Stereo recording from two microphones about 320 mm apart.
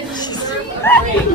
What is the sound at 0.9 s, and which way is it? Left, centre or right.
Speech, centre.